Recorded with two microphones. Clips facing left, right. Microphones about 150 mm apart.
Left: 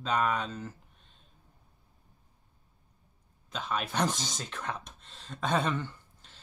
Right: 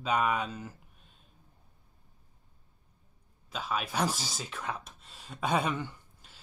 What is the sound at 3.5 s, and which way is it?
Speech, 5° right (ahead or behind).